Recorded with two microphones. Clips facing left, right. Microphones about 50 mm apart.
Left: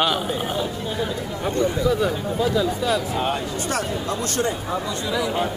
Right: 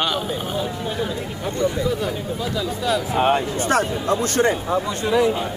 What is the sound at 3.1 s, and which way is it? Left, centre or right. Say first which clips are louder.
Speech: right 5 dB; right.